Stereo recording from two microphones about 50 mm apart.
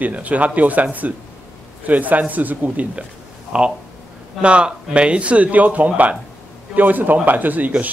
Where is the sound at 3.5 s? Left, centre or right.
Right.